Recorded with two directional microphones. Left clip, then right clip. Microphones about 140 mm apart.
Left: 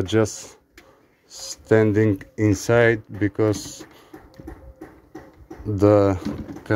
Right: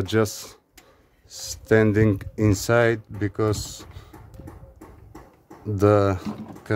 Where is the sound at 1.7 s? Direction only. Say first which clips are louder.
Left 1 dB; 30° right (ahead or behind).